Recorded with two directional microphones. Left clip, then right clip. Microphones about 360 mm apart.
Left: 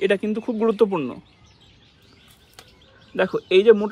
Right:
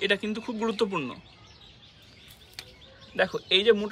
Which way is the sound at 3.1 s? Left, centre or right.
Centre.